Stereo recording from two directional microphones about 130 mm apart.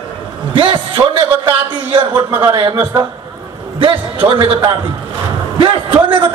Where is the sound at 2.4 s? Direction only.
35° right (ahead or behind).